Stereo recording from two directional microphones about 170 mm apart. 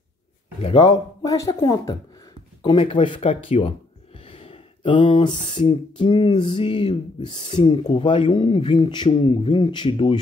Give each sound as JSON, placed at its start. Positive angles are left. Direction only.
{"t": 0.6, "sound": "speech", "side_deg": 35}
{"t": 0.8, "sound": "speech", "side_deg": 20}
{"t": 2.6, "sound": "speech", "side_deg": 30}
{"t": 4.2, "sound": "a sound", "side_deg": 35}
{"t": 5.6, "sound": "speech", "side_deg": 30}